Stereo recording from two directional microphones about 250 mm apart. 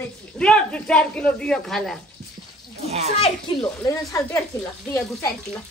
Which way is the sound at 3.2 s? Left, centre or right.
Centre.